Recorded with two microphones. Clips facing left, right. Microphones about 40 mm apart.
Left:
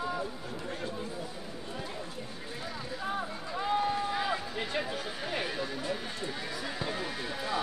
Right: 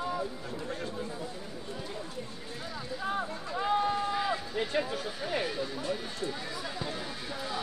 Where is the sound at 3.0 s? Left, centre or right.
Centre.